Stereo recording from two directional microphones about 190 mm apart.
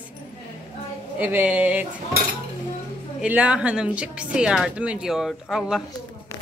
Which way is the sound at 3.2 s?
5° right (ahead or behind).